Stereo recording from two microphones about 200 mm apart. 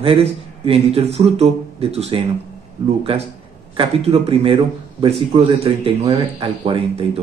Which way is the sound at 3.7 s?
30° right (ahead or behind).